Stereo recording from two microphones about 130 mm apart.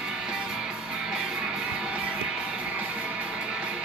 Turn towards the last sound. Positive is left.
turn(degrees=-5)  # may be behind; listen again after turning